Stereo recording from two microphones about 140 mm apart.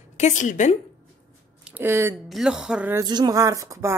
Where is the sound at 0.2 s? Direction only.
65° left (ahead or behind).